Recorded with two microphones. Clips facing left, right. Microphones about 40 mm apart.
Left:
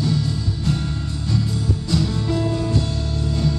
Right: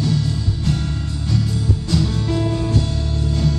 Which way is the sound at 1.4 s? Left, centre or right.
Centre.